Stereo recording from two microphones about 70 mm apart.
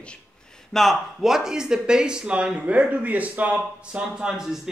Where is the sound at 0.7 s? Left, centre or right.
Centre; by 3.6 s right.